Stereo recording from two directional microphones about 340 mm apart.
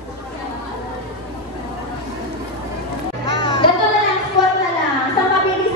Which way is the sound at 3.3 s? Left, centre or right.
Centre.